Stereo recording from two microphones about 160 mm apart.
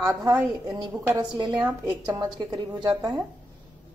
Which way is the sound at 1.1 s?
30° right (ahead or behind).